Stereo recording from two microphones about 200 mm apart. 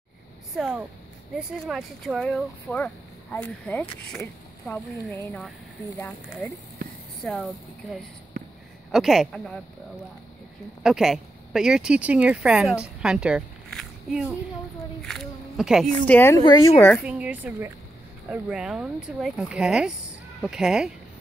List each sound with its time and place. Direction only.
0.6 s speech: 5° right (ahead or behind)
8.3 s a sound: 45° right (ahead or behind)
8.9 s speech: centre (ahead or behind)
10.8 s speech: centre (ahead or behind)
13.0 s a sound: 5° right (ahead or behind)
15.0 s speech: centre (ahead or behind)
16.1 s speech: 10° left (ahead or behind)
17.0 s a woman's voice: 5° right (ahead or behind)